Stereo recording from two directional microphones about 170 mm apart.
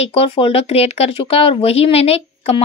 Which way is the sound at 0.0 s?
35° left (ahead or behind).